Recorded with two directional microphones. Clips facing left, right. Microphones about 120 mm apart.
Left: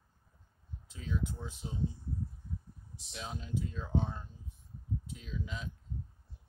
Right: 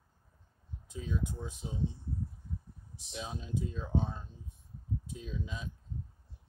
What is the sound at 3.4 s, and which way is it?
Speech, 20° right (ahead or behind).